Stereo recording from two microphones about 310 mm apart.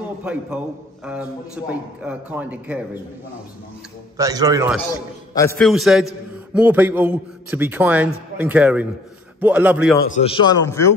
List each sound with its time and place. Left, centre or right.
0.2 s a man's voice: centre
1.7 s a man's voice: centre
4.2 s a man's voice: centre
4.7 s a man's voice: centre
10.0 s a man's voice: left